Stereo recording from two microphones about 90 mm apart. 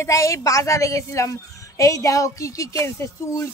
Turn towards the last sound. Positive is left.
turn(degrees=30)  # may be behind; listen again after turning